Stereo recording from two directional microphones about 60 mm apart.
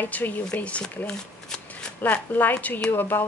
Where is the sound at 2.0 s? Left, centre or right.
Left.